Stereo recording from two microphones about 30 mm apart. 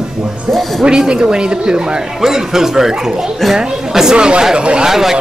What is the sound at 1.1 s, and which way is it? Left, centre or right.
Speech, right.